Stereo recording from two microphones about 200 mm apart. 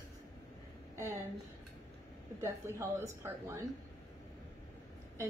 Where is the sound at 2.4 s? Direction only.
15° right (ahead or behind).